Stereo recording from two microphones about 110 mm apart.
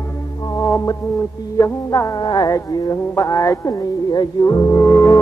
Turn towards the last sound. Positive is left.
turn(degrees=20)  # may be behind; listen again after turning